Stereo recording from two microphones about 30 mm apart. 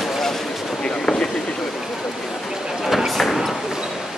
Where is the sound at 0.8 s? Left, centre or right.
Left.